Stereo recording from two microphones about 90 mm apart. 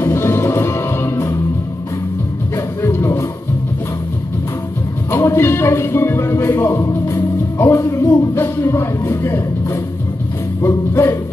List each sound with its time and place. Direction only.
0.0 s music: 30° left (ahead or behind)
2.5 s music: 30° left (ahead or behind)
5.1 s speech: 30° left (ahead or behind)
8.4 s speech: 25° left (ahead or behind)